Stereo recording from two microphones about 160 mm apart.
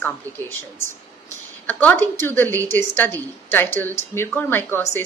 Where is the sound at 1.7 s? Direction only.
10° left (ahead or behind).